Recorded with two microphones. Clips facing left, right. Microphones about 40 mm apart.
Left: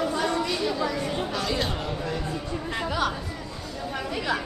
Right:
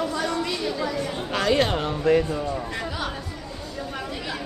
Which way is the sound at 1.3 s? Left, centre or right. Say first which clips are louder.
Right 6 dB; right.